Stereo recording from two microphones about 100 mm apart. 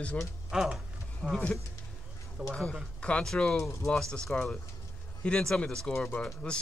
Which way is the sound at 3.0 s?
10° left (ahead or behind).